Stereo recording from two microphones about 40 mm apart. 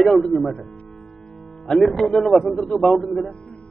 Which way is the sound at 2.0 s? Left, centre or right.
Centre.